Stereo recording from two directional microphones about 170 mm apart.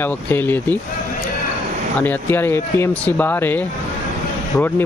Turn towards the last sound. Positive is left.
turn(degrees=10)  # may be behind; listen again after turning